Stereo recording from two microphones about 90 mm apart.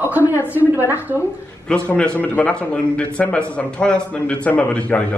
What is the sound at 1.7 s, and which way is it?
A man's voice, 10° left (ahead or behind).